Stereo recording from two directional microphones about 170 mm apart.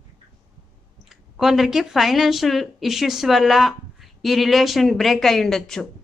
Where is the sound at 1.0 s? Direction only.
5° right (ahead or behind).